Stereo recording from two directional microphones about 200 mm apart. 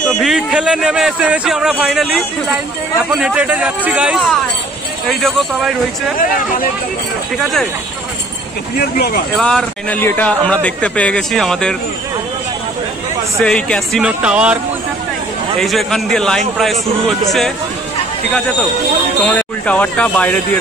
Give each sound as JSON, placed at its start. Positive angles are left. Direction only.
{"t": 0.1, "sound": "a man's voice", "side_deg": 0}
{"t": 7.3, "sound": "a man's voice", "side_deg": 0}
{"t": 8.7, "sound": "speech", "side_deg": 50}
{"t": 9.4, "sound": "a man's voice", "side_deg": 5}
{"t": 13.4, "sound": "a man's voice", "side_deg": 5}
{"t": 15.6, "sound": "a man's voice", "side_deg": 0}
{"t": 19.2, "sound": "speech", "side_deg": 5}